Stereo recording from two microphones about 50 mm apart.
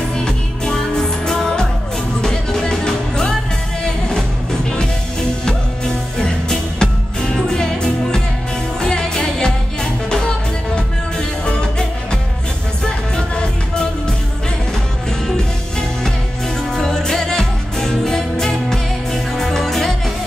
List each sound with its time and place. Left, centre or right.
0.1 s music: centre
5.4 s music: centre
16.7 s music: centre